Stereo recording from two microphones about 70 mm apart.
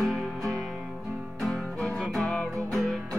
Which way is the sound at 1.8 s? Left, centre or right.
Centre.